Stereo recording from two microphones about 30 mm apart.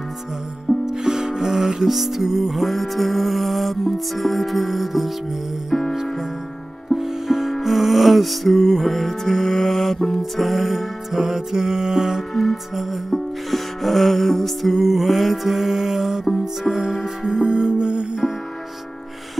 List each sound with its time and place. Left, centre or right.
0.8 s music: centre
5.7 s music: centre
6.9 s music: centre
12.4 s music: centre
17.5 s music: right